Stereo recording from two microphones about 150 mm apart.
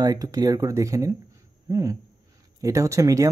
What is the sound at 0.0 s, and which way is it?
Speech, 25° right (ahead or behind).